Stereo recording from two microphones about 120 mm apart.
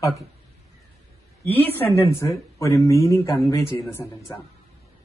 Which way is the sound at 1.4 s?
20° left (ahead or behind).